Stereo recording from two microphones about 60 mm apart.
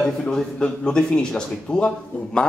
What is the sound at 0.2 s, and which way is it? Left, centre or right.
A man's voice, centre.